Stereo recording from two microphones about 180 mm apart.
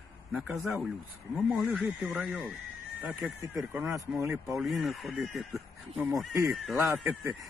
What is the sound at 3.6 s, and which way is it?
Speech, 5° right (ahead or behind).